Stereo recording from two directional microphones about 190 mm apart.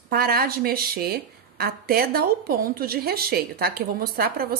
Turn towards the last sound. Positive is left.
turn(degrees=-55)  # may be behind; listen again after turning